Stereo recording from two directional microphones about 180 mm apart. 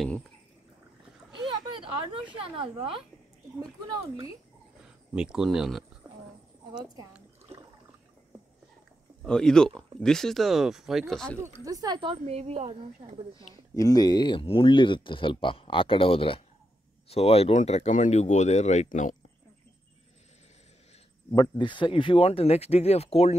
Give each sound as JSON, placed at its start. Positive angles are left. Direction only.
{"t": 1.3, "sound": "a sound", "side_deg": -25}
{"t": 2.3, "sound": "a woman's voice", "side_deg": -30}
{"t": 4.8, "sound": "speech", "side_deg": -5}
{"t": 9.2, "sound": "speech", "side_deg": 5}
{"t": 11.6, "sound": "a woman's voice", "side_deg": -20}
{"t": 13.7, "sound": "speech", "side_deg": 20}
{"t": 21.4, "sound": "speech", "side_deg": 25}